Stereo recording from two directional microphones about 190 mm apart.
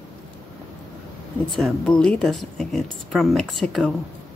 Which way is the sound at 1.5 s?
5° left (ahead or behind).